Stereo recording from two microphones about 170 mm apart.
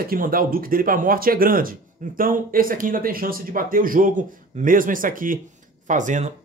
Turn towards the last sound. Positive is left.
turn(degrees=-45)  # may be behind; listen again after turning